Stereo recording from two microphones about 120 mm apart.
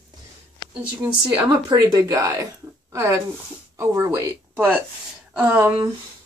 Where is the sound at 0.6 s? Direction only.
35° left (ahead or behind).